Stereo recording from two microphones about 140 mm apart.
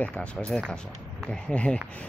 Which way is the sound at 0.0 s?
10° left (ahead or behind).